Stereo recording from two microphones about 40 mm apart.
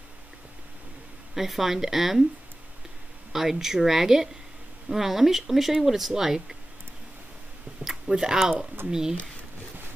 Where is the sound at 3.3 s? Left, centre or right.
Centre.